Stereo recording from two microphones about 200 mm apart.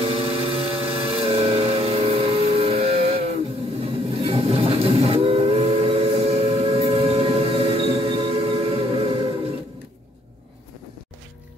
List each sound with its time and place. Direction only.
0.0 s vehicle: 30° right (ahead or behind)
3.8 s train: 30° right (ahead or behind)